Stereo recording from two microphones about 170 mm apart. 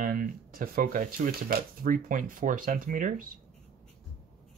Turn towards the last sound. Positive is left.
turn(degrees=-55)  # may be behind; listen again after turning